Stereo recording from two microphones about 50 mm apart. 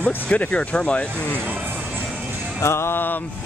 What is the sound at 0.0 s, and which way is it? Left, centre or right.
Speech, left.